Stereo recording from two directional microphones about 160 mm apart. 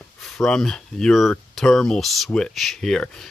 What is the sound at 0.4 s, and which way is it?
Speech, 5° left (ahead or behind).